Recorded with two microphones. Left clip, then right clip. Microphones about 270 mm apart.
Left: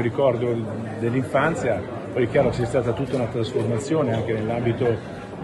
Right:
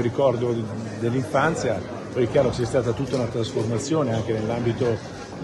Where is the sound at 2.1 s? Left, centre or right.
Centre.